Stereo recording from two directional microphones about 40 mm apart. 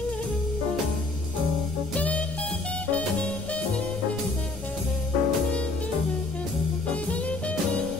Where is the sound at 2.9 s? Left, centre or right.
Left.